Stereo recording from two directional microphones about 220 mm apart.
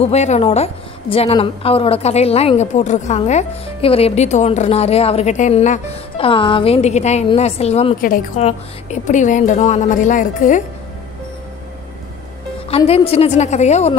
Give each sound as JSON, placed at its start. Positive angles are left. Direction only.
{"t": 0.0, "sound": "a woman's voice", "side_deg": 30}
{"t": 12.6, "sound": "a woman's voice", "side_deg": 25}